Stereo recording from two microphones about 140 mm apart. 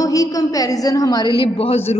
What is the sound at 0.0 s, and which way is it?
A woman's voice, 25° left (ahead or behind).